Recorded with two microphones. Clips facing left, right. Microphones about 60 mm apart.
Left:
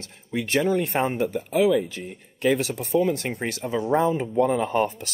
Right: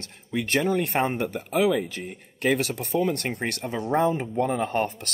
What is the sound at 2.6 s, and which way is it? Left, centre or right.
Speech, right.